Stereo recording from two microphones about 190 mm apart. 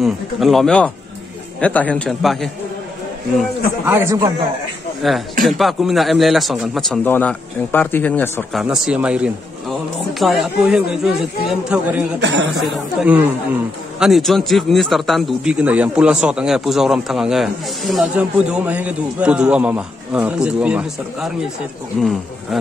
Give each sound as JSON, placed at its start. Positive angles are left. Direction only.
{"t": 0.0, "sound": "a man's voice", "side_deg": 0}
{"t": 3.8, "sound": "speech", "side_deg": -15}
{"t": 5.0, "sound": "a man's voice", "side_deg": 0}
{"t": 8.5, "sound": "a man's voice", "side_deg": -5}
{"t": 12.2, "sound": "speech", "side_deg": -70}
{"t": 13.0, "sound": "a man's voice", "side_deg": -10}